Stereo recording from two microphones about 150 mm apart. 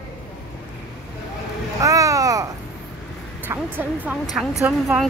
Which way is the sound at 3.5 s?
10° right (ahead or behind).